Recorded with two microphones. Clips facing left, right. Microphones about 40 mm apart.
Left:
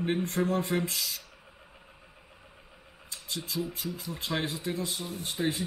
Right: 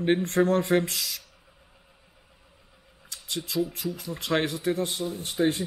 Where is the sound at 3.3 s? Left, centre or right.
Right.